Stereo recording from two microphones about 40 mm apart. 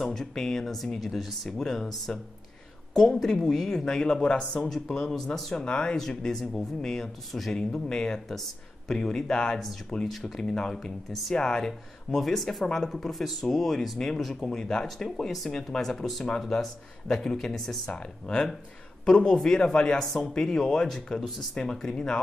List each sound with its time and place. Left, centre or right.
0.0 s speech: centre; by 4.6 s left
4.6 s speech: centre
5.9 s speech: centre
11.1 s speech: centre
11.3 s speech: centre
15.0 s speech: centre
15.5 s speech: centre
17.9 s speech: left